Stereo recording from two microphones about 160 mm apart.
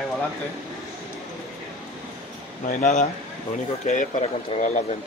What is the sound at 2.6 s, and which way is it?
Speech, 50° left (ahead or behind).